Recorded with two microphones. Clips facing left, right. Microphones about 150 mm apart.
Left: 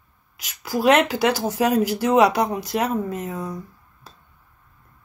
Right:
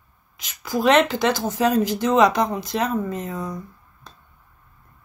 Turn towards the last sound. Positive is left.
turn(degrees=10)  # may be behind; listen again after turning